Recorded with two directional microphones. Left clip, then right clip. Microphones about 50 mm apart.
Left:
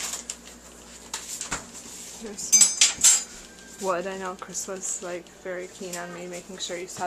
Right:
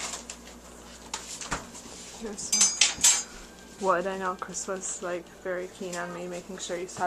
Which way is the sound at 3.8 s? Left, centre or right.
Centre.